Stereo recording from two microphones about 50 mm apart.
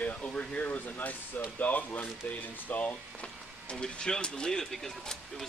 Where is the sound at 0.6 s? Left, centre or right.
Left; by 5.5 s centre.